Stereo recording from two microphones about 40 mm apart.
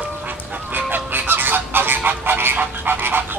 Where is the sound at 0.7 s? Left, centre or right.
Right.